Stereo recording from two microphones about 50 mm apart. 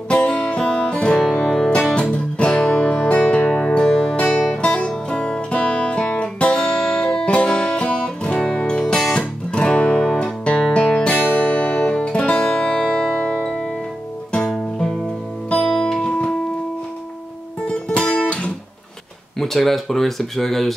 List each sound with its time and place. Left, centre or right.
0.1 s music: left
11.1 s music: left
12.4 s music: centre
12.6 s music: centre
14.5 s music: centre
17.6 s music: left
19.4 s speech: centre